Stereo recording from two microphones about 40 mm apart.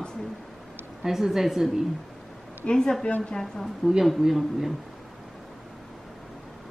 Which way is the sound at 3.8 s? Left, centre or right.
Centre.